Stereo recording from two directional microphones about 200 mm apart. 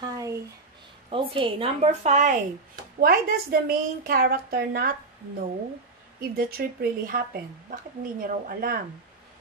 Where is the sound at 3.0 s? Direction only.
45° right (ahead or behind).